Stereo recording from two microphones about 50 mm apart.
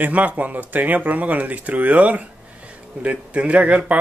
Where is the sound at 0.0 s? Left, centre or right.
Right.